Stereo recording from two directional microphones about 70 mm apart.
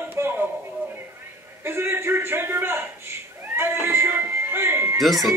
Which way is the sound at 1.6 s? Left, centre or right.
Right.